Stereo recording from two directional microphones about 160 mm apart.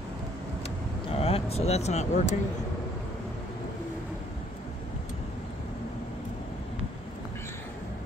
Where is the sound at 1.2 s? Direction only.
40° left (ahead or behind).